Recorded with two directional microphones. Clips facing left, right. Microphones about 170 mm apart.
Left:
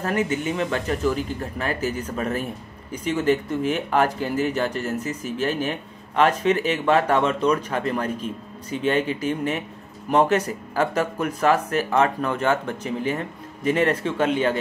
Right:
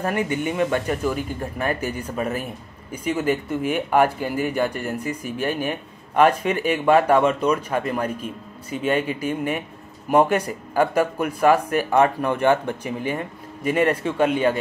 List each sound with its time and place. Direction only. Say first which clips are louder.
0.3 s speech: right 2 dB; 15° right (ahead or behind)